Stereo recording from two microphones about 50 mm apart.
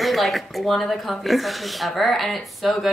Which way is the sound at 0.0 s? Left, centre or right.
Centre.